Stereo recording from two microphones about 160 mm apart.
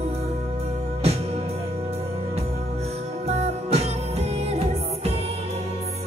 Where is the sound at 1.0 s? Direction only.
40° right (ahead or behind).